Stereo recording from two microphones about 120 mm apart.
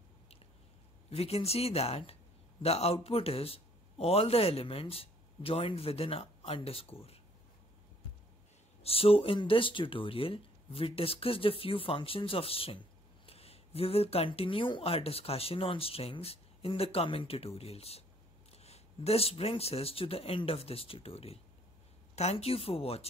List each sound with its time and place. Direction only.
1.1 s speech: 60° left (ahead or behind)
8.8 s speech: 55° left (ahead or behind)